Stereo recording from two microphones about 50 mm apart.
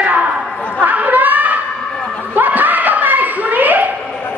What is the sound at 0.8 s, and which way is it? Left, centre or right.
Chatter, right.